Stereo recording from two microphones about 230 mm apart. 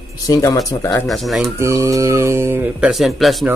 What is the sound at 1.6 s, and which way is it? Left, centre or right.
Speech, centre.